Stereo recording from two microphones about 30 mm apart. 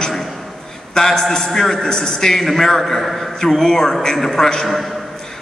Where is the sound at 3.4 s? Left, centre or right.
Centre.